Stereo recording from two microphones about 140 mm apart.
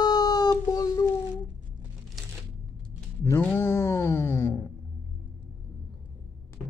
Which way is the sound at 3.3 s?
15° left (ahead or behind).